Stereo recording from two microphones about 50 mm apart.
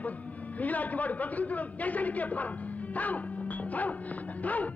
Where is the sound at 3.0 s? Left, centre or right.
Left.